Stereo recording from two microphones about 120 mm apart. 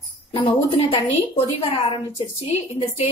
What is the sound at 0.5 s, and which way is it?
A woman's voice, 50° left (ahead or behind).